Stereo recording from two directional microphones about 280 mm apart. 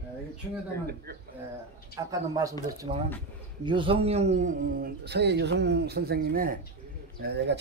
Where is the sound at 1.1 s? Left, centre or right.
Right.